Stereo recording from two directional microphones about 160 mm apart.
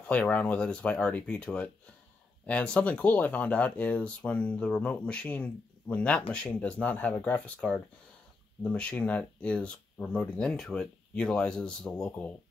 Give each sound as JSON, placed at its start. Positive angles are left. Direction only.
{"t": 0.0, "sound": "speech", "side_deg": 10}